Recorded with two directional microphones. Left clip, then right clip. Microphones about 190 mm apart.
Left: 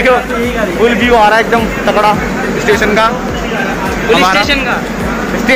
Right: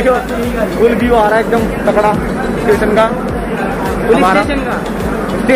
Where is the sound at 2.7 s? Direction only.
10° right (ahead or behind).